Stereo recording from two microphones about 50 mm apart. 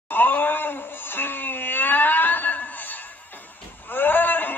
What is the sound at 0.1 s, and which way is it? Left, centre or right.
Wail, left.